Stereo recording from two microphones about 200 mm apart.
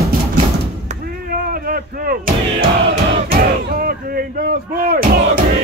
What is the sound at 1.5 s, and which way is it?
Artillery fire, 45° right (ahead or behind).